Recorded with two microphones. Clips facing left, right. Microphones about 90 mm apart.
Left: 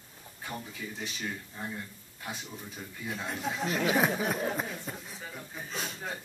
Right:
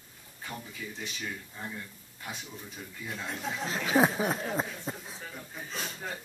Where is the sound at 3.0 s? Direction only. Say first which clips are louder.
Left 2 dB; 5° left (ahead or behind).